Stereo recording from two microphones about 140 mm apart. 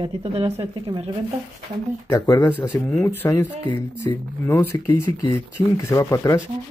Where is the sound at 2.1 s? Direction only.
15° left (ahead or behind).